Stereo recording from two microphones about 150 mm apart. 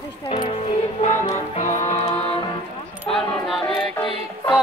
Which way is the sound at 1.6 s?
55° left (ahead or behind).